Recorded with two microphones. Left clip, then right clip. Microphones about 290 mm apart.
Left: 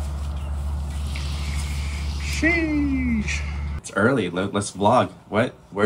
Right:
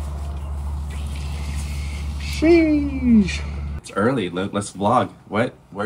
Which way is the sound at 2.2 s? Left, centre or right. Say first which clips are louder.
Right 6 dB; centre.